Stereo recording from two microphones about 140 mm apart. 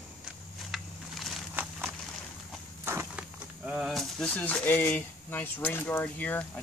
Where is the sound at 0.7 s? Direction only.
Centre (ahead or behind).